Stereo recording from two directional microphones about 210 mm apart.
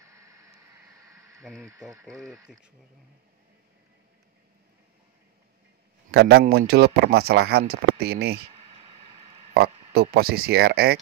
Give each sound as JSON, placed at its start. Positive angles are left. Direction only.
{"t": 0.0, "sound": "a sound", "side_deg": -15}
{"t": 1.7, "sound": "speech", "side_deg": -15}
{"t": 6.1, "sound": "speech", "side_deg": -50}
{"t": 9.5, "sound": "speech", "side_deg": -50}